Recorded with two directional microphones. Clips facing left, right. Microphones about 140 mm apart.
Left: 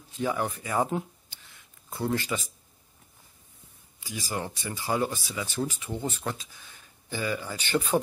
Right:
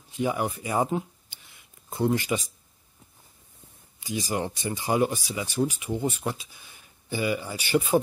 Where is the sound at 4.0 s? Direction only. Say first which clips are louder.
Right 5 dB; 20° right (ahead or behind).